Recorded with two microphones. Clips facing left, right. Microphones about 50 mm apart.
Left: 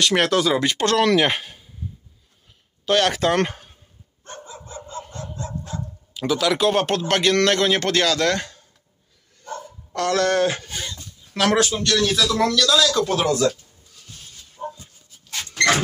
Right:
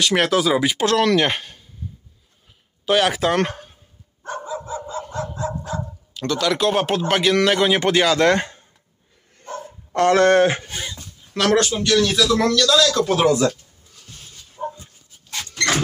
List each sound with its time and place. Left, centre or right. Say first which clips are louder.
0.0 s a man's voice: right 1 dB; centre
2.8 s speech: right 1 dB; centre
6.1 s a man's voice: even; centre; by 8.6 s right
9.4 s dog: right 1 dB; right
10.7 s a sound: right 1 dB; centre
11.3 s a man's voice: right 1 dB; centre
14.6 s dog: right 3 dB; centre